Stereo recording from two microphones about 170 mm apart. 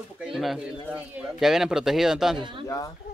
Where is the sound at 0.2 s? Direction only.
Centre (ahead or behind).